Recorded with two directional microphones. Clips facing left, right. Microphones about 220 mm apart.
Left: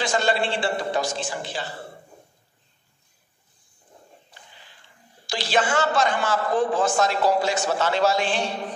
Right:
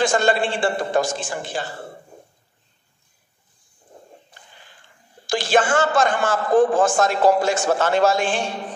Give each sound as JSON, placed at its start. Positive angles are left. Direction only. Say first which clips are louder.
{"t": 0.0, "sound": "a man's voice", "louder": "right 4 dB", "side_deg": -50}
{"t": 5.2, "sound": "a man's voice", "louder": "right 5 dB", "side_deg": -50}